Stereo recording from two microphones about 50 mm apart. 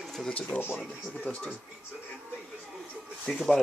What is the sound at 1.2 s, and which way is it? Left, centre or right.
Speech, left.